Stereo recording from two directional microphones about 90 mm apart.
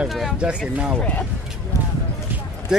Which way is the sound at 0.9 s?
15° left (ahead or behind).